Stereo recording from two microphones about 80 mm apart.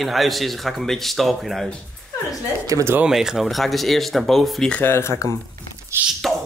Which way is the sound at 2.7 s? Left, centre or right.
Right.